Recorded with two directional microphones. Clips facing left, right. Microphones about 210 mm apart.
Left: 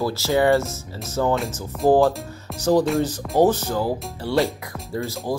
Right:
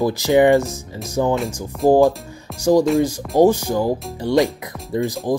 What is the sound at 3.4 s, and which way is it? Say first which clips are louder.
Speech: right 4 dB; 10° right (ahead or behind).